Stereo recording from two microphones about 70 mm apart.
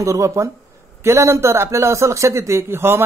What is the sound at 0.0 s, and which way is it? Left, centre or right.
A man's voice, right.